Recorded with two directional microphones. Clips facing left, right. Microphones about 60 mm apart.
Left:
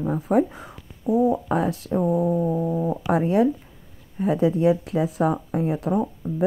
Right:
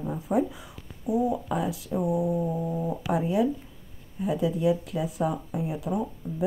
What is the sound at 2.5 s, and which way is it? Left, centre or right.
A woman's voice, left.